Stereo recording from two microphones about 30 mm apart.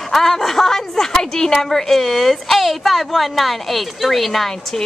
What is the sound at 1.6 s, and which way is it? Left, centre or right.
A woman's voice, centre.